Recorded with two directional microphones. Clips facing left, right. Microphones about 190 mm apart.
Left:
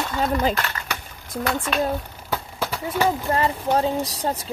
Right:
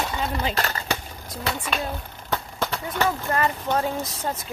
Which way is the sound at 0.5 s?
30° right (ahead or behind).